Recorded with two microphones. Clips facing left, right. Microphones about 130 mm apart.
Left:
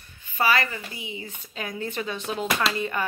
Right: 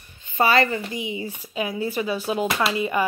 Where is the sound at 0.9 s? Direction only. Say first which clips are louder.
Right 8 dB; 15° right (ahead or behind).